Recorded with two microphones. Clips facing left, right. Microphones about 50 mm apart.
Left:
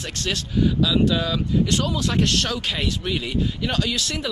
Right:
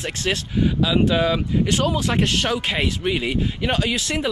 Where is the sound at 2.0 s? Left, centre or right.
Centre.